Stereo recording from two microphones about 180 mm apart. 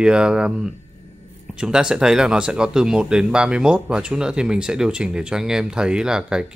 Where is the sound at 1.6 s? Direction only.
5° right (ahead or behind).